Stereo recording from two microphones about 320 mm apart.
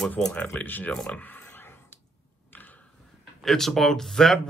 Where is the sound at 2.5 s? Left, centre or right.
Centre.